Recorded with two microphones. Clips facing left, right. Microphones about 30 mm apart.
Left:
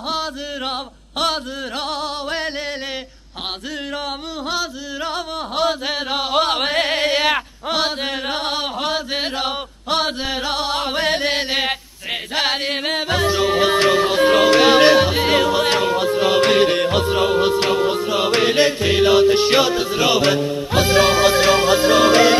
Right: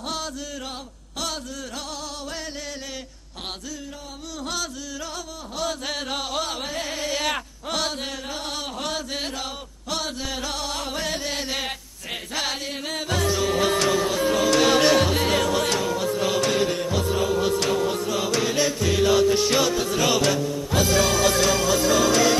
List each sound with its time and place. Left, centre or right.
5.0 s music: left
6.3 s a sound: left
8.3 s chant: left